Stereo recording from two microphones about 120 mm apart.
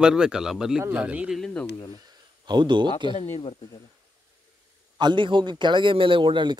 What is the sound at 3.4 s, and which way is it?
Speech, 45° left (ahead or behind).